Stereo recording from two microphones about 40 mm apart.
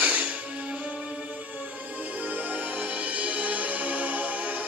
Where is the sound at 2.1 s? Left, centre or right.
Right.